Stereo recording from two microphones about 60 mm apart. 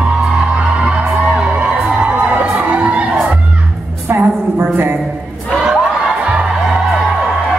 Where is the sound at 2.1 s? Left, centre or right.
Right.